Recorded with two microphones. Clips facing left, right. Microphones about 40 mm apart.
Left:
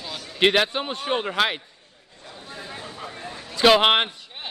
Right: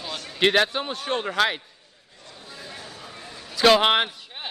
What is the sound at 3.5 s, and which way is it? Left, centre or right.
Speech, centre.